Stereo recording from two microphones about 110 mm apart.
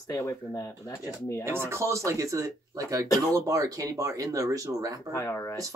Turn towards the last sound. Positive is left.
turn(degrees=25)  # may be behind; listen again after turning